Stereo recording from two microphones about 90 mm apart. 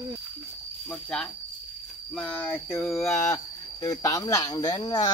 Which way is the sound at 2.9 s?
30° left (ahead or behind).